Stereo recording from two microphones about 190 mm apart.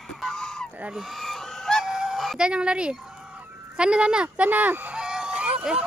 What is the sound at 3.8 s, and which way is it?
Speech, 5° right (ahead or behind).